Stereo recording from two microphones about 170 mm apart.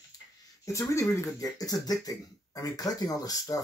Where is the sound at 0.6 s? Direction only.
15° left (ahead or behind).